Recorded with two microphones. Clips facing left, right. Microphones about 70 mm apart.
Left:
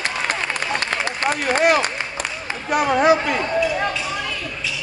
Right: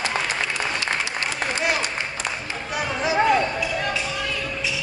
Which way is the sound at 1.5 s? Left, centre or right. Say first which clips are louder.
Left 9 dB; left.